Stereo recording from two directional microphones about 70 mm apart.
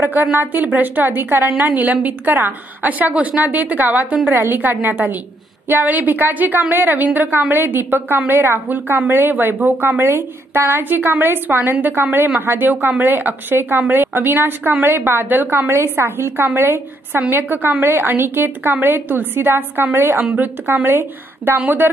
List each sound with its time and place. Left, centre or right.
0.0 s a woman's voice: right
4.3 s a woman's voice: right
4.6 s a woman's voice: right
15.7 s a woman's voice: right